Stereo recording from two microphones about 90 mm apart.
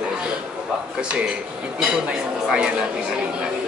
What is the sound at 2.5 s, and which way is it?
Speech, 10° right (ahead or behind).